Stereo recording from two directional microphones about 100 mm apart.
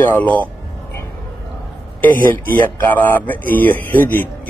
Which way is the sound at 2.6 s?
15° left (ahead or behind).